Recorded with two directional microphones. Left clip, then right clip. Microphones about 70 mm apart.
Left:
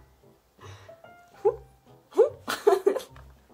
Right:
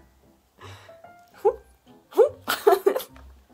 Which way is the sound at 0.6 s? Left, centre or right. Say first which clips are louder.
Right 3 dB; right.